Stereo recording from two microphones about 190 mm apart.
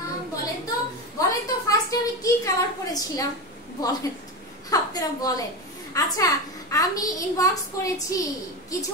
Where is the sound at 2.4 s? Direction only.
20° left (ahead or behind).